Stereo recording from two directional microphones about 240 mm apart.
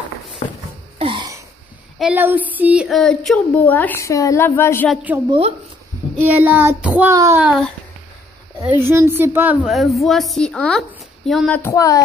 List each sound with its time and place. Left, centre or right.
0.4 s speech: left
0.9 s throat clearing: right
2.0 s a woman's voice: centre
6.2 s child singing: centre
8.5 s child singing: centre
9.6 s a woman's voice: centre